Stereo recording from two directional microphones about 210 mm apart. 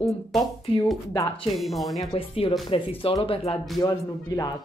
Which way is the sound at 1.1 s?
15° left (ahead or behind).